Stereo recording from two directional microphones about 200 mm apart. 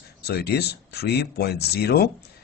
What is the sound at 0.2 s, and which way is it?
Speech, 55° left (ahead or behind).